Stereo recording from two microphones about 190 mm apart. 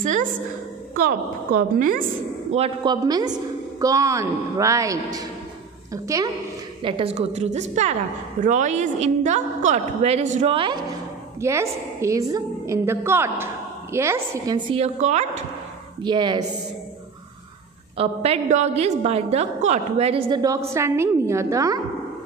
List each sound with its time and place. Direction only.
2.5 s a woman's voice: 30° right (ahead or behind)
6.8 s a woman's voice: 25° right (ahead or behind)
11.4 s a woman's voice: 15° right (ahead or behind)
14.7 s a woman's voice: 35° right (ahead or behind)
16.0 s a woman's voice: 25° right (ahead or behind)
17.9 s a woman's voice: 30° right (ahead or behind)